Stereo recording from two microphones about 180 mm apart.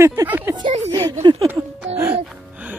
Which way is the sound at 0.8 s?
20° right (ahead or behind).